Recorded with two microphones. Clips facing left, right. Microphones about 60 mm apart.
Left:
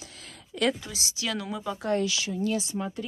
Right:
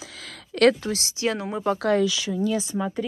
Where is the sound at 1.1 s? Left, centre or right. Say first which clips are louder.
Right 4 dB; right.